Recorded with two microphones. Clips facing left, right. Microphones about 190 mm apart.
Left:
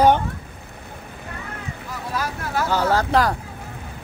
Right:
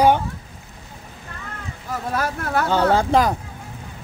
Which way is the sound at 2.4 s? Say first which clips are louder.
Right 2 dB; 60° right (ahead or behind).